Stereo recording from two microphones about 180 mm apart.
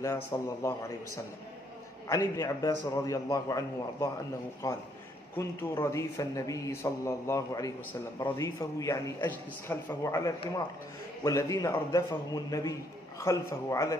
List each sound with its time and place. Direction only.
0.0 s a man's voice: 15° left (ahead or behind)